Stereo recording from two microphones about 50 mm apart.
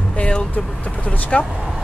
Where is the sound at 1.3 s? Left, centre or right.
Left.